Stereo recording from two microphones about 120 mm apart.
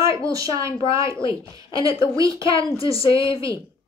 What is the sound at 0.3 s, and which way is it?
A woman's voice, 25° right (ahead or behind).